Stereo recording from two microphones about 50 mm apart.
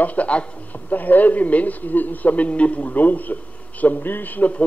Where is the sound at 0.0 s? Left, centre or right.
Left.